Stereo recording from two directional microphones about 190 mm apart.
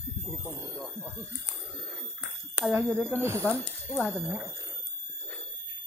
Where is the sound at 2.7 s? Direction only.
10° right (ahead or behind).